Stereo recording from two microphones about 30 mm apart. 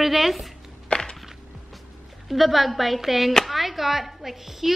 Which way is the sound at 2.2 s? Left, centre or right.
Centre.